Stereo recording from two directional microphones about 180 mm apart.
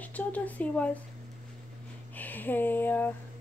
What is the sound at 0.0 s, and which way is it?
Speech, 10° left (ahead or behind).